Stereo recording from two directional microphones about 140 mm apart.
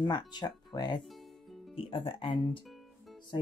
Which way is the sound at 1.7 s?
40° left (ahead or behind).